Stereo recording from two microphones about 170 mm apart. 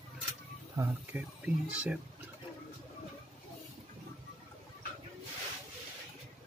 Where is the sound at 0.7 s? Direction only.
10° right (ahead or behind).